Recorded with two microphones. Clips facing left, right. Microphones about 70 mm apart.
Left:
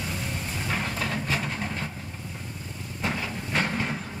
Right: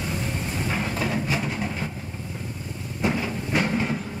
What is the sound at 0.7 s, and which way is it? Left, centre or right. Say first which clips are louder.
Vehicle: right 2 dB; centre.